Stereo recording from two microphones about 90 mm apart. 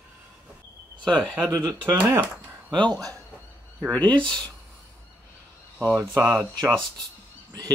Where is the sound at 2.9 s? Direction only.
40° right (ahead or behind).